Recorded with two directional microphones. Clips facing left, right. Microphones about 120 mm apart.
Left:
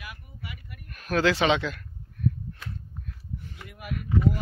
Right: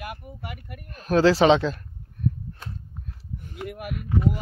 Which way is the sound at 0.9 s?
30° right (ahead or behind).